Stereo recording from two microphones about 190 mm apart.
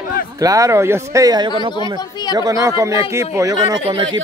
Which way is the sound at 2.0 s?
20° left (ahead or behind).